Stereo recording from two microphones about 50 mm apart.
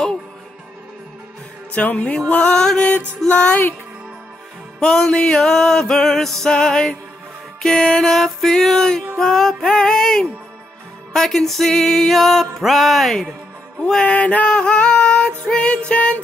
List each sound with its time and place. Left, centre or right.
1.7 s music: left; by 3.4 s centre
4.7 s music: centre
14.0 s music: left
14.5 s female singing: centre
15.5 s music: left